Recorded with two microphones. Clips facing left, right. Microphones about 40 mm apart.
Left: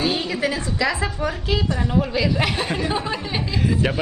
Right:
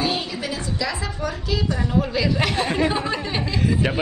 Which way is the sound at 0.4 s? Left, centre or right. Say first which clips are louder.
Left 4 dB; left.